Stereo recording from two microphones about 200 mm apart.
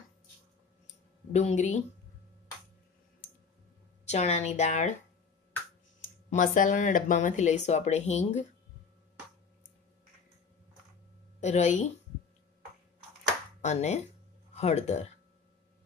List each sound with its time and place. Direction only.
1.3 s speech: 35° left (ahead or behind)
4.1 s speech: 35° left (ahead or behind)
6.3 s speech: 40° left (ahead or behind)
11.4 s speech: 35° left (ahead or behind)
13.6 s speech: 35° left (ahead or behind)